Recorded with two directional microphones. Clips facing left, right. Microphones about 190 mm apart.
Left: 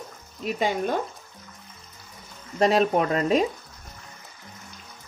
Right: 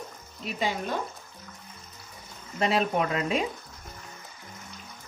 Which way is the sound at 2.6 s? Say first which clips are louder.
Left 5 dB; 40° left (ahead or behind).